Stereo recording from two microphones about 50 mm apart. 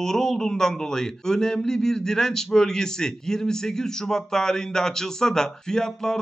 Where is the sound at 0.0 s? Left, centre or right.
Centre.